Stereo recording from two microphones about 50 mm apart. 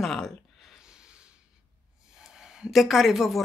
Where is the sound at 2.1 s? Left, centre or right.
Centre.